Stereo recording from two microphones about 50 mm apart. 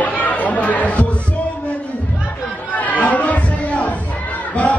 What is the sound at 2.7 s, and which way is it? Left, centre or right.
Chatter, left.